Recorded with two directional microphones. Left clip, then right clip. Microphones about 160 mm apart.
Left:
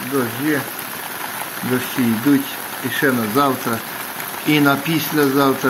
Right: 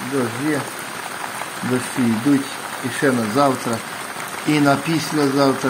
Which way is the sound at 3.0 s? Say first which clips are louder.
Even; 10° right (ahead or behind).